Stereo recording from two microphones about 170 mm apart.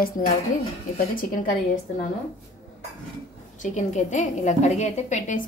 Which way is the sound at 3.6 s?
45° left (ahead or behind).